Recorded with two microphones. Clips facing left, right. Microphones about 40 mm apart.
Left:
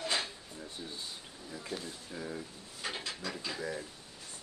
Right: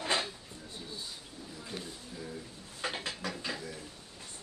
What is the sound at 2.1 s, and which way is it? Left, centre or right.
Speech, left.